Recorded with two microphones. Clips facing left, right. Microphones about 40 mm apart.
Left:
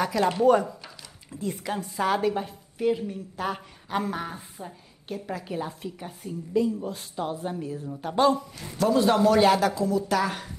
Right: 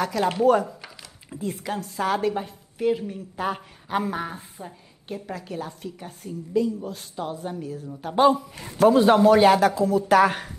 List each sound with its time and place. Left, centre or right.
0.0 s a woman's voice: centre
8.2 s speech: centre
8.5 s speech: right; by 10.0 s centre
10.0 s speech: right